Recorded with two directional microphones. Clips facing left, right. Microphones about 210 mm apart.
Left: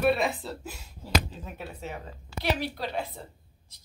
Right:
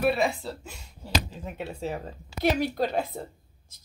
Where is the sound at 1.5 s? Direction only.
25° right (ahead or behind).